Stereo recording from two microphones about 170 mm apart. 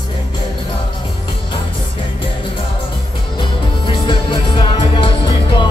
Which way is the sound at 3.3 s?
30° left (ahead or behind).